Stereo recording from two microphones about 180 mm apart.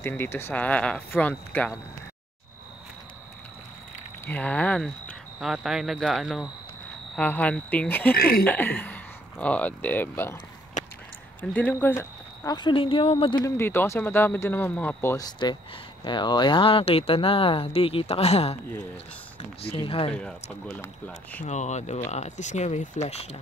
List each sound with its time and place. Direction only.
0.0 s speech: 15° left (ahead or behind)
4.3 s speech: 5° left (ahead or behind)
8.2 s speech: 55° left (ahead or behind)
8.5 s speech: 10° left (ahead or behind)
10.8 s a sound: 45° left (ahead or behind)
11.5 s speech: 10° left (ahead or behind)
12.5 s speech: 25° left (ahead or behind)
13.6 s speech: 15° left (ahead or behind); by 18.6 s 35° left (ahead or behind)
19.6 s speech: 30° left (ahead or behind)
20.1 s speech: 5° left (ahead or behind)
21.5 s speech: 40° left (ahead or behind)